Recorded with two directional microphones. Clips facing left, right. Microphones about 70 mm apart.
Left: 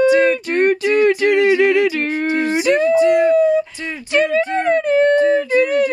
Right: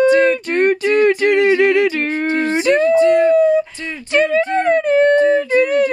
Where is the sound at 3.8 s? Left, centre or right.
Centre.